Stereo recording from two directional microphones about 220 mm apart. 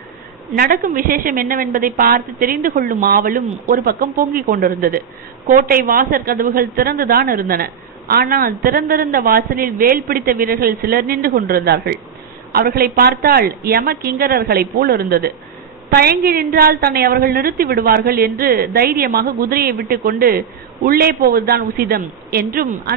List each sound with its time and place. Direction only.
0.6 s speech: 40° right (ahead or behind)